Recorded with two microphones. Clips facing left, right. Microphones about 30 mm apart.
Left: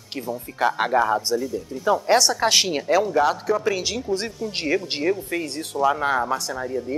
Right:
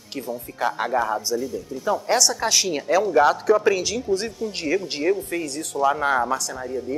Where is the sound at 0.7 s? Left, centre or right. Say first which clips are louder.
Left 2 dB; left.